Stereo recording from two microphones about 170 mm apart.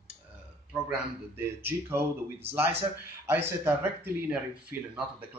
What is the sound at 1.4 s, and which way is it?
Speech, 15° right (ahead or behind).